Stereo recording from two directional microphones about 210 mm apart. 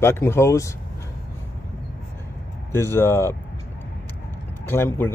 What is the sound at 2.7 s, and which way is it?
Speech, 10° left (ahead or behind).